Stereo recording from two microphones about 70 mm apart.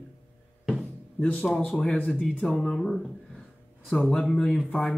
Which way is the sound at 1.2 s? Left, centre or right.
Left.